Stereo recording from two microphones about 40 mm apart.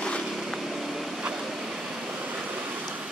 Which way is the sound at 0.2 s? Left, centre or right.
Centre.